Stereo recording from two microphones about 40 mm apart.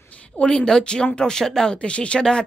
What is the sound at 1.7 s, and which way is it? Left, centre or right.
Speech, left.